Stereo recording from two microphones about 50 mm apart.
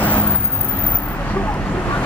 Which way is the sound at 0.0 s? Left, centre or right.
Left.